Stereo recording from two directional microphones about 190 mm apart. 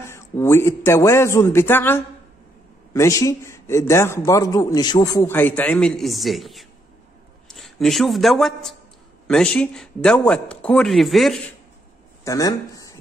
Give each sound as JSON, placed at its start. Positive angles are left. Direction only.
{"t": 0.0, "sound": "a man's voice", "side_deg": 15}
{"t": 12.3, "sound": "a man's voice", "side_deg": 20}